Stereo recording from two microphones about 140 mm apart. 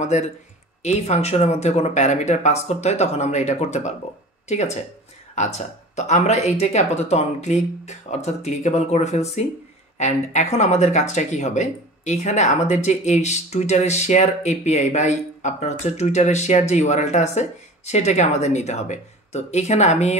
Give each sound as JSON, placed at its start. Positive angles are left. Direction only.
{"t": 0.0, "sound": "speech", "side_deg": 55}